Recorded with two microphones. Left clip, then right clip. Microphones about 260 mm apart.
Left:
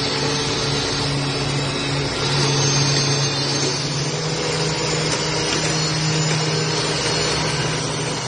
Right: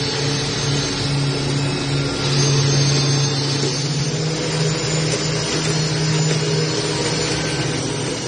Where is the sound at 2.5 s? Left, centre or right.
Right.